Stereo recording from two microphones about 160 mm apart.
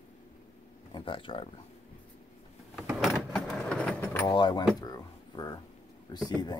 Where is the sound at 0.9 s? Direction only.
30° left (ahead or behind).